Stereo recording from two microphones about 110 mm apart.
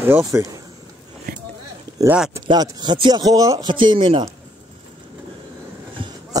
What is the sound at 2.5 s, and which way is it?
Speech, 40° right (ahead or behind).